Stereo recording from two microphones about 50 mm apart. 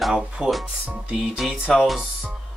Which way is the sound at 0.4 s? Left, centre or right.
Centre.